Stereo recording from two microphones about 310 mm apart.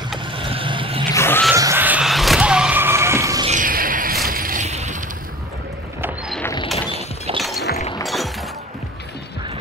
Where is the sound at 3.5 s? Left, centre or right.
Right.